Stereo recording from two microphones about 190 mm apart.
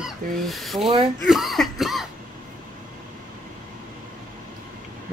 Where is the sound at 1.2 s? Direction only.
Centre (ahead or behind).